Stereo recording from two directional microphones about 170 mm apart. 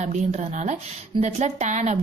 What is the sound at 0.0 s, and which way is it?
A woman's voice, 40° right (ahead or behind).